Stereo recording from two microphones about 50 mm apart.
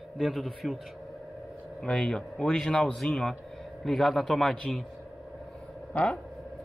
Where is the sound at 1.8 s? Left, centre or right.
Centre.